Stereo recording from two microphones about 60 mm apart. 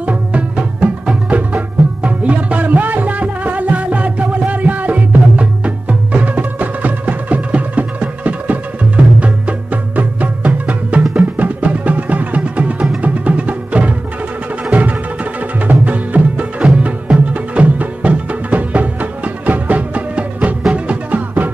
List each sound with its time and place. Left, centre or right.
0.0 s music: right